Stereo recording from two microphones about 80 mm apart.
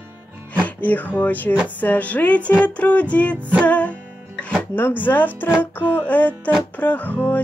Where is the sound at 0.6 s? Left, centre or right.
Left.